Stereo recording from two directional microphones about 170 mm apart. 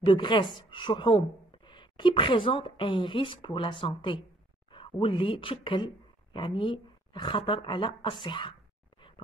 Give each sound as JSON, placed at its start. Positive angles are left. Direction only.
{"t": 0.0, "sound": "a woman's voice", "side_deg": 30}